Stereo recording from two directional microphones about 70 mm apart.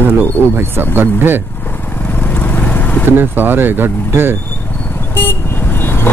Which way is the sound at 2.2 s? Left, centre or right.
Left.